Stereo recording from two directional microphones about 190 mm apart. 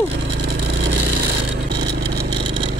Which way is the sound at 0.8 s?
70° right (ahead or behind).